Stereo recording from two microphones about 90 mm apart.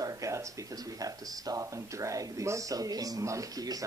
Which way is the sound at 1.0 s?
40° right (ahead or behind).